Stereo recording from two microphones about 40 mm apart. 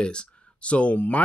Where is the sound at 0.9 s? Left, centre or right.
Left.